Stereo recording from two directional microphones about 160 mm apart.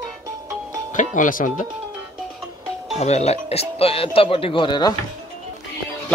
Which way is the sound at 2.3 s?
Centre (ahead or behind).